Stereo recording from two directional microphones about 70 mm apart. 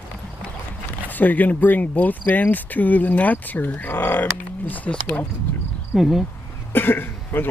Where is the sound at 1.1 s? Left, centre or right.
Left.